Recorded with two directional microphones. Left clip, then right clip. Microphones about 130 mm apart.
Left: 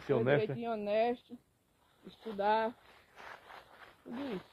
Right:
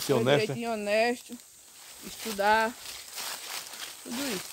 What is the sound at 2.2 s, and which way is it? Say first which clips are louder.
Speech: right 7 dB; 30° right (ahead or behind).